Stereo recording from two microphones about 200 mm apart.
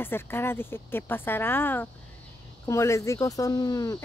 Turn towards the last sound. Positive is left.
turn(degrees=20)  # may be behind; listen again after turning